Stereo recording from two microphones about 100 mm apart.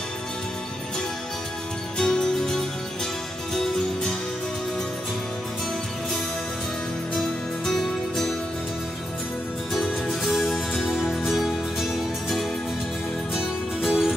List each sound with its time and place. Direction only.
2.0 s music: 5° left (ahead or behind)
7.2 s music: 5° left (ahead or behind)
9.8 s music: centre (ahead or behind)